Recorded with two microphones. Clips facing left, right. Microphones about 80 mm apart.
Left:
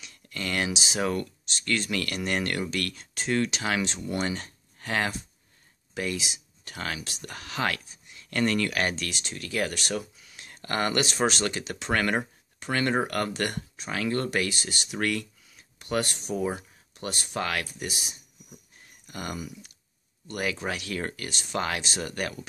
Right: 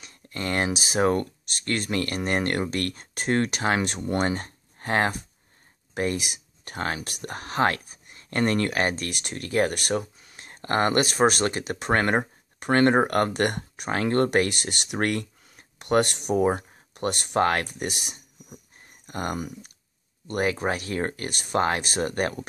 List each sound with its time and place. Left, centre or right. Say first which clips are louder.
0.0 s a sound: right 3 dB; right
0.7 s speech: right 5 dB; right
1.0 s speech: right 7 dB; right
5.9 s speech: right 4 dB; right
7.8 s a sound: right 2 dB; right
8.2 s speech: right 2 dB; right
9.1 s speech: right 6 dB; right
12.5 s speech: right 7 dB; right
15.0 s speech: right 3 dB; right
16.3 s speech: right 7 dB; right
16.9 s speech: right 7 dB; right
17.4 s speech: right 8 dB; right
17.6 s speech: right 4 dB; right
19.0 s speech: right 5 dB; right